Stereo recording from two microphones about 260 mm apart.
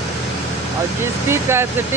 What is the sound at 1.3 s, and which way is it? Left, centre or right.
Speech, centre.